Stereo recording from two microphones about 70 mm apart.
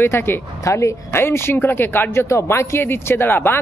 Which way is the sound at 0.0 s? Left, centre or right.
Left.